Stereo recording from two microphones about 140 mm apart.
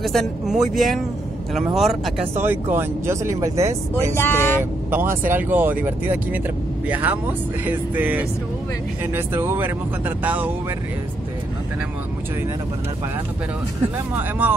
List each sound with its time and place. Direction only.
0.0 s speech: centre (ahead or behind)
2.3 s speech: 15° right (ahead or behind)
4.1 s speech: 15° left (ahead or behind)
4.9 s speech: 20° right (ahead or behind)